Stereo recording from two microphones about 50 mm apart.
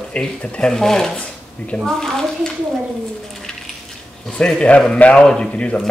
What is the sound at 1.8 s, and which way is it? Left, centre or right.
Speech, centre.